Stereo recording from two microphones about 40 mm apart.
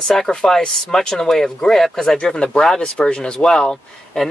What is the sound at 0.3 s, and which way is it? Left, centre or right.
Speech, centre.